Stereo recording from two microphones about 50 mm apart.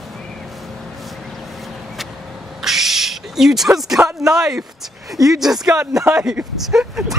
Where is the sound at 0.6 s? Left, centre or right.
Centre.